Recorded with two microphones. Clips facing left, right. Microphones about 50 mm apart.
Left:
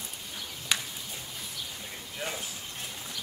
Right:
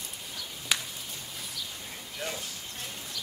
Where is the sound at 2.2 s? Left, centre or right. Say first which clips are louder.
Even; centre.